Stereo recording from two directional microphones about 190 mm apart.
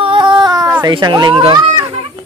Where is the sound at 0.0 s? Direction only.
25° right (ahead or behind).